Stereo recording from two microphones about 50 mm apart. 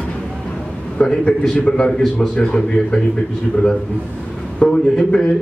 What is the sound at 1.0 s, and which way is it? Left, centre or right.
A man's voice, left.